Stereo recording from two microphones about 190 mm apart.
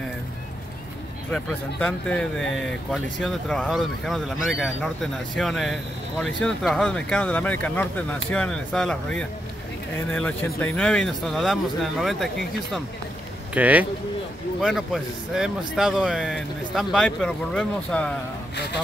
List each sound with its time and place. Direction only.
1.3 s speech: 10° left (ahead or behind)